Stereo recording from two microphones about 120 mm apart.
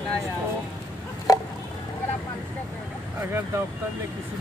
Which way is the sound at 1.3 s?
30° left (ahead or behind).